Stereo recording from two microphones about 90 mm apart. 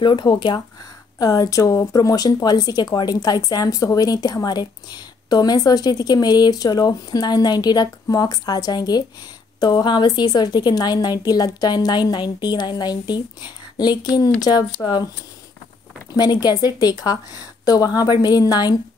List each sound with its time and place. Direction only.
0.0 s speech: 55° left (ahead or behind)
1.2 s speech: 45° left (ahead or behind)
16.1 s speech: 45° left (ahead or behind)